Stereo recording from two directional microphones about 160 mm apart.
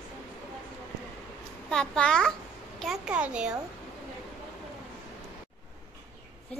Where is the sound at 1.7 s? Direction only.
5° left (ahead or behind).